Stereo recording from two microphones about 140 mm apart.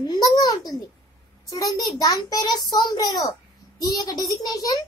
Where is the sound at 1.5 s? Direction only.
25° left (ahead or behind).